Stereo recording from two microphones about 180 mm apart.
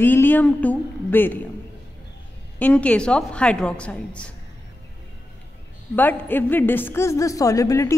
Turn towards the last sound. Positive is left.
turn(degrees=15)  # may be behind; listen again after turning